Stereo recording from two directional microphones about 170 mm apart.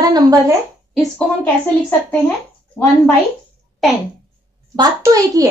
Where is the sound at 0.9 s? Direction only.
5° left (ahead or behind).